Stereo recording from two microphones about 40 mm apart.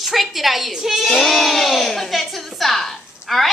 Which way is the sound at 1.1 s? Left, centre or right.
Centre.